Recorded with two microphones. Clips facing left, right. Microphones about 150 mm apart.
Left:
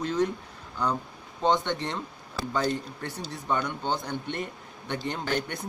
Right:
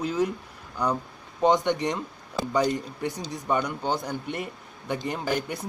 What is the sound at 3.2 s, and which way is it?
Speech, 10° right (ahead or behind).